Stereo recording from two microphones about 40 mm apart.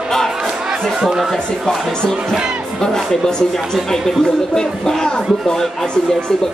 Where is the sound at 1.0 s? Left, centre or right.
Centre.